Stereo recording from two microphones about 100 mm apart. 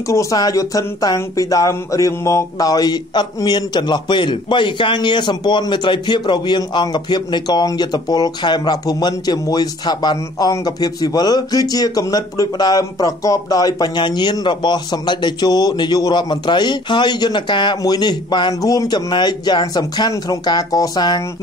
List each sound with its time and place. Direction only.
0.1 s speech: 30° left (ahead or behind); by 18.5 s 50° left (ahead or behind)
18.5 s speech: 35° left (ahead or behind)